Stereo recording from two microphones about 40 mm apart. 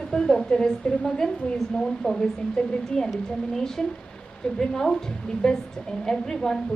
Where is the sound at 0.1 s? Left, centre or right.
Centre.